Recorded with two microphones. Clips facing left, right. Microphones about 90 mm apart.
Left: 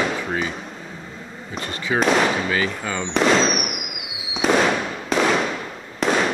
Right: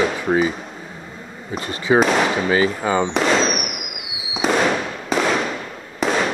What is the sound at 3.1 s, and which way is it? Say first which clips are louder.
Speech: even; centre (ahead or behind).